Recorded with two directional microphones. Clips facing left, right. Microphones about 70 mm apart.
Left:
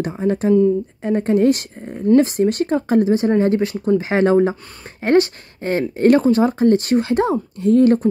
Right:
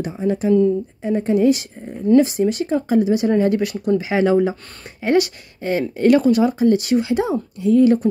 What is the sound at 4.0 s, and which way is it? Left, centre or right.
Speech, left.